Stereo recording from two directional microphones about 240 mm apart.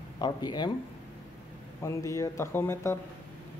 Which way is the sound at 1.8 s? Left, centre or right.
Centre.